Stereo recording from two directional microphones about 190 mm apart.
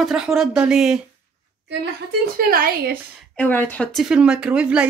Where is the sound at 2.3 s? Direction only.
50° right (ahead or behind).